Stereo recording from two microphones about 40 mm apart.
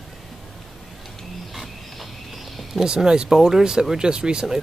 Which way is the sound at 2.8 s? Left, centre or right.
Centre.